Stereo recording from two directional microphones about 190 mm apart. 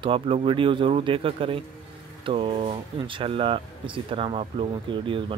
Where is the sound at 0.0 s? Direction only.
30° right (ahead or behind).